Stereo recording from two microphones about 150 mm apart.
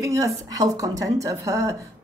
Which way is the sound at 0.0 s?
20° right (ahead or behind).